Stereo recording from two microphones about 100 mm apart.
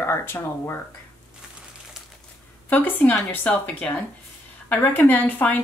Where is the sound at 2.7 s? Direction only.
20° left (ahead or behind).